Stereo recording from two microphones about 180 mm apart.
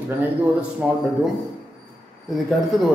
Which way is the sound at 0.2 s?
5° right (ahead or behind).